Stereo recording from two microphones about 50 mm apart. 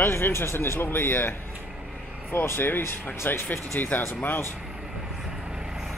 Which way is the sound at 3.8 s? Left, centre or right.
Left.